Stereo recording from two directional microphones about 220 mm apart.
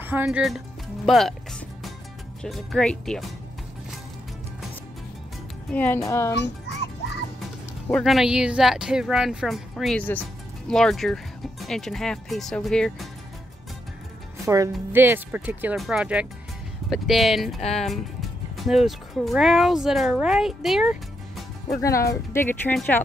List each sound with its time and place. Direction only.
0.0 s speech: 10° right (ahead or behind)
1.0 s music: centre (ahead or behind)
2.4 s speech: centre (ahead or behind)
5.7 s speech: 5° left (ahead or behind)
6.3 s music: 50° left (ahead or behind)
7.9 s speech: centre (ahead or behind)
14.4 s speech: 15° right (ahead or behind)
21.8 s speech: 15° left (ahead or behind)